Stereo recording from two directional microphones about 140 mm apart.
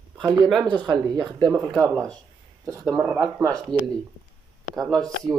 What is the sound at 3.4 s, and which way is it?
Speech, 25° right (ahead or behind).